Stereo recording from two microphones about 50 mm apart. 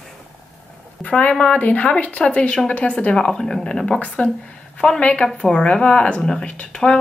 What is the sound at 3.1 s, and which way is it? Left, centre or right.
Speech, centre.